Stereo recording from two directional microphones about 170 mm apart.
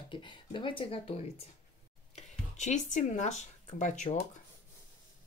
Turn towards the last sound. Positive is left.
turn(degrees=45)  # may be behind; listen again after turning